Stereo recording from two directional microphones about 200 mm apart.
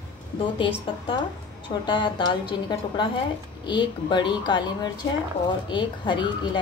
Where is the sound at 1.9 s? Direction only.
20° left (ahead or behind).